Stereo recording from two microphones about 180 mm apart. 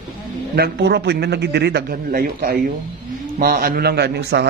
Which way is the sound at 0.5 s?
65° right (ahead or behind).